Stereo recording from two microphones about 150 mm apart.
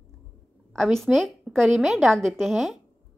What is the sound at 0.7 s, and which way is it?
A woman's voice, centre (ahead or behind).